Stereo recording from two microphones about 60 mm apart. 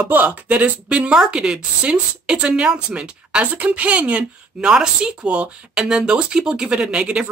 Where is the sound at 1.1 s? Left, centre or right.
Centre.